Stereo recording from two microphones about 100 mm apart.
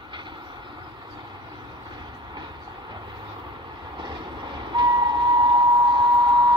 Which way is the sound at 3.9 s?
55° right (ahead or behind).